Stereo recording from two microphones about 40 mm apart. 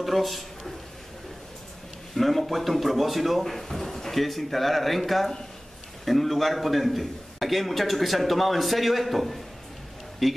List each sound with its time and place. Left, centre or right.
0.0 s speech: centre
2.1 s a man's voice: centre